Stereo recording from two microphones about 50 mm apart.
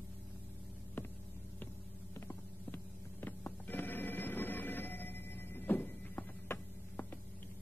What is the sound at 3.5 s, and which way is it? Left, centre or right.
Telephone bell ringing, left.